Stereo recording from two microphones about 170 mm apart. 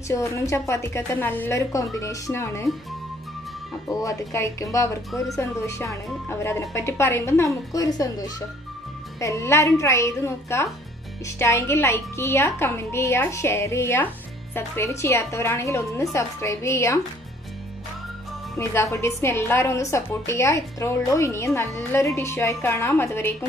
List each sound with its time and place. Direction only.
0.1 s a woman's voice: 15° left (ahead or behind)
4.0 s a woman's voice: 20° left (ahead or behind)
9.2 s a woman's voice: 15° left (ahead or behind)
18.6 s a woman's voice: 15° left (ahead or behind)